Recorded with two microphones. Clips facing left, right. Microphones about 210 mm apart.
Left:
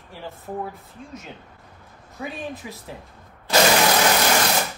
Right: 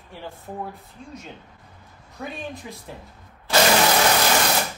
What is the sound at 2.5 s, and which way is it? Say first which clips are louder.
Speech: left 1 dB; 5° left (ahead or behind).